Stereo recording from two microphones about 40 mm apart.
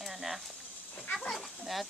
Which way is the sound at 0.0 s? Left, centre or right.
Centre.